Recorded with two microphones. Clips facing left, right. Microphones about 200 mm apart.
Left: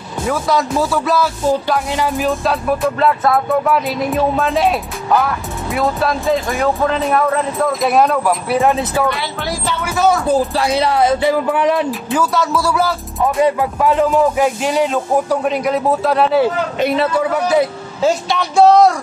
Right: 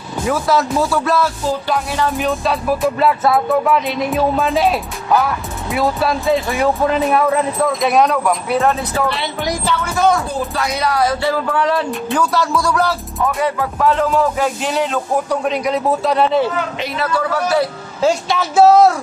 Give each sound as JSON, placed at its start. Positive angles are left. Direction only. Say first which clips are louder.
{"t": 0.3, "sound": "music", "louder": "right 1 dB", "side_deg": 0}
{"t": 1.7, "sound": "speech", "louder": "left 1 dB", "side_deg": 15}
{"t": 2.1, "sound": "music", "louder": "left 1 dB", "side_deg": 0}
{"t": 8.5, "sound": "speech", "louder": "left 2 dB", "side_deg": 15}
{"t": 9.8, "sound": "music", "louder": "left 1 dB", "side_deg": 5}
{"t": 10.5, "sound": "music", "louder": "left 3 dB", "side_deg": 30}
{"t": 11.9, "sound": "music", "louder": "even", "side_deg": 0}
{"t": 13.2, "sound": "speech", "louder": "left 4 dB", "side_deg": 20}
{"t": 16.9, "sound": "music", "louder": "left 1 dB", "side_deg": 25}
{"t": 18.0, "sound": "music", "louder": "even", "side_deg": 0}